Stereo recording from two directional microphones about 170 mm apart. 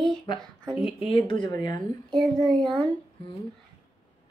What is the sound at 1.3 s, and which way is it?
Speech, 25° left (ahead or behind).